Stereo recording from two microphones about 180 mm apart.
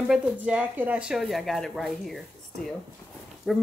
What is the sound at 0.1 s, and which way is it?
A woman's voice, 5° right (ahead or behind).